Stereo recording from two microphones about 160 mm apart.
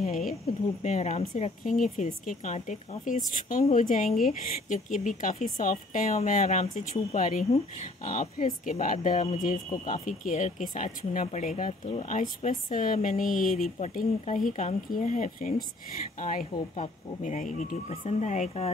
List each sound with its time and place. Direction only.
0.8 s speech: 45° left (ahead or behind)
7.4 s speech: 40° left (ahead or behind)